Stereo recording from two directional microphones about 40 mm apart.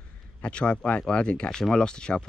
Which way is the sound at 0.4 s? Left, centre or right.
Left.